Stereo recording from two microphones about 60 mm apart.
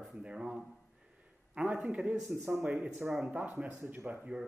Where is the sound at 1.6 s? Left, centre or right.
Right.